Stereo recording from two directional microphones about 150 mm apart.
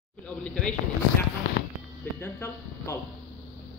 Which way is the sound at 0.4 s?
5° left (ahead or behind).